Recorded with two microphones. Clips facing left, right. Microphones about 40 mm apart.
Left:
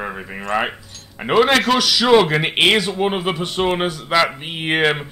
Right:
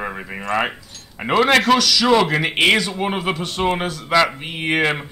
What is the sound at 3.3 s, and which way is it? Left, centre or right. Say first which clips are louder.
Speech: left 1 dB; centre.